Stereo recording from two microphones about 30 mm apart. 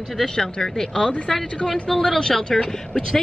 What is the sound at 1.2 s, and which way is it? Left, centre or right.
Speech, centre.